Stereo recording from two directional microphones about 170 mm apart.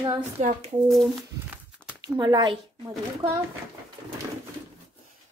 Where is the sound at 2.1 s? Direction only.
25° right (ahead or behind).